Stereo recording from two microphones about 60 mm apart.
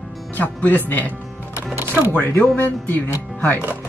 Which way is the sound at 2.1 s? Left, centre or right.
Left.